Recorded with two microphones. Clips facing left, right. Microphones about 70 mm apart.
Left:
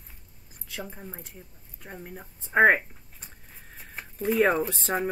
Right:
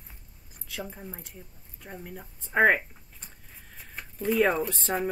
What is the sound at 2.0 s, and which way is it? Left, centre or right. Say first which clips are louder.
Speech: even; centre.